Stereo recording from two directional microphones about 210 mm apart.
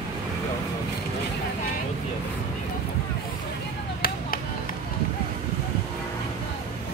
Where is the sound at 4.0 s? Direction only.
45° left (ahead or behind).